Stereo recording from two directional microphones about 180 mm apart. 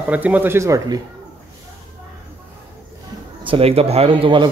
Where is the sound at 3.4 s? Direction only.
30° right (ahead or behind).